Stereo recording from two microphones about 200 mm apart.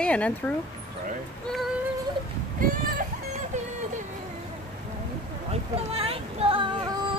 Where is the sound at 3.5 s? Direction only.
35° right (ahead or behind).